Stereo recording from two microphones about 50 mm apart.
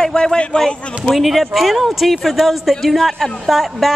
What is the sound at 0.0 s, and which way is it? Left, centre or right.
Speech, centre.